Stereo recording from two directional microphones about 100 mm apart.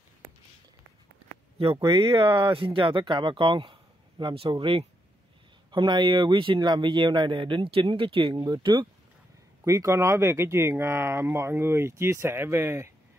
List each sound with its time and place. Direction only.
1.6 s speech: 75° right (ahead or behind)
2.0 s a man's voice: 60° right (ahead or behind)
9.7 s speech: 30° right (ahead or behind)